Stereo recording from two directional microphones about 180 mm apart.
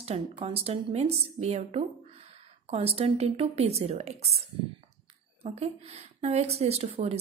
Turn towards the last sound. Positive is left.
turn(degrees=-35)  # may be behind; listen again after turning